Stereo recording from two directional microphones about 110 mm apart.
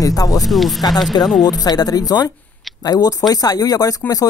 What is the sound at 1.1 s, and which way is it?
Speech, 40° left (ahead or behind).